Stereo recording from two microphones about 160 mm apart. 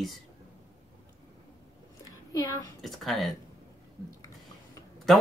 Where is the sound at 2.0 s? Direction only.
25° left (ahead or behind).